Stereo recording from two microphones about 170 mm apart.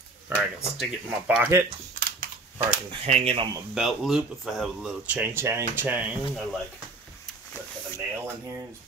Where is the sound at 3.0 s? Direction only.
35° right (ahead or behind).